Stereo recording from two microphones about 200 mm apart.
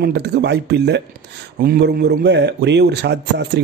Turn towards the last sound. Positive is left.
turn(degrees=-55)  # may be behind; listen again after turning